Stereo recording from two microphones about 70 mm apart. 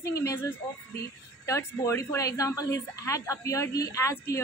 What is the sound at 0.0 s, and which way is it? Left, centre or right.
Speech, left.